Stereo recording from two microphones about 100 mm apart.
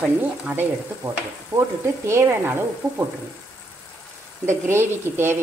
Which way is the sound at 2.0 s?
25° right (ahead or behind).